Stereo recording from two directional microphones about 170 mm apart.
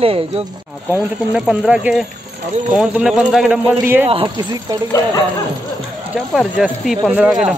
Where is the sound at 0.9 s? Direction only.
5° right (ahead or behind).